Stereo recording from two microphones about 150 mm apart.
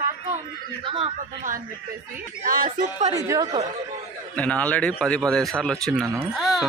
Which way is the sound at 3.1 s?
20° right (ahead or behind).